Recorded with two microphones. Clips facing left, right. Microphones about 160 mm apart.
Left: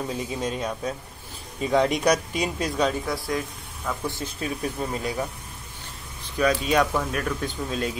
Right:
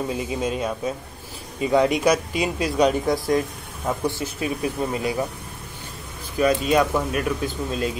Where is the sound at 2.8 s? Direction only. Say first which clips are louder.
Right 6 dB; 20° right (ahead or behind).